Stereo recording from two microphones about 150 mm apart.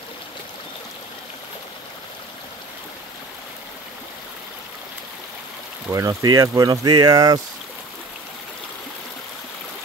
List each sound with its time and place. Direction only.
5.9 s speech: 20° right (ahead or behind)